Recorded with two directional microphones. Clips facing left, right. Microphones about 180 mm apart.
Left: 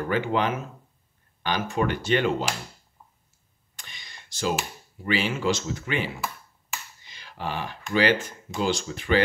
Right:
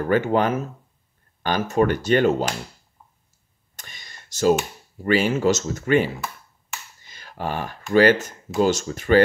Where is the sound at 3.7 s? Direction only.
45° right (ahead or behind).